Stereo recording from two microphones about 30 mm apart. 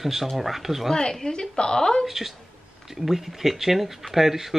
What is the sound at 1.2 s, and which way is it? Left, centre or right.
Speech, left.